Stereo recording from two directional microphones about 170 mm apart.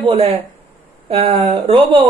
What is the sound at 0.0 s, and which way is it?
Speech, 30° right (ahead or behind).